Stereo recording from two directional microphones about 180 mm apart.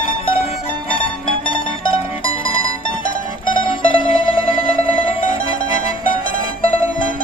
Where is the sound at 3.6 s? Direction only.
30° left (ahead or behind).